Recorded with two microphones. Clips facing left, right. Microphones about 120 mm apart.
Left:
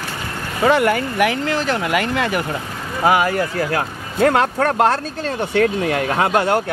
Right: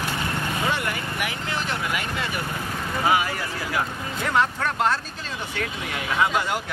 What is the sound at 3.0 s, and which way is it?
Speech, 55° left (ahead or behind).